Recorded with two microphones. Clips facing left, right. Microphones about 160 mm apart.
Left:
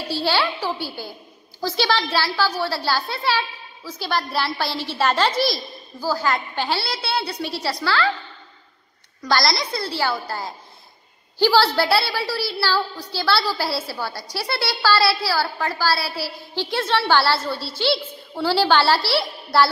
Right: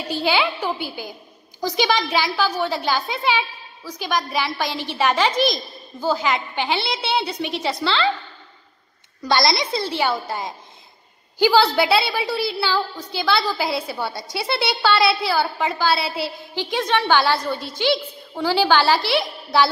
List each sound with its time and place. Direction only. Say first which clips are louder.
0.1 s a child's voice: right 1 dB; 15° right (ahead or behind)
9.3 s a woman's voice: right 2 dB; 20° right (ahead or behind)